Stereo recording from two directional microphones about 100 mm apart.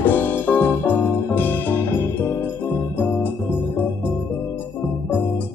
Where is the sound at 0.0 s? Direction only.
20° left (ahead or behind).